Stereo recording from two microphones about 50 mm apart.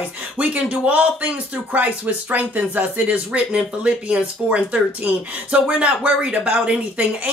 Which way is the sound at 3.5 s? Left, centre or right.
Centre.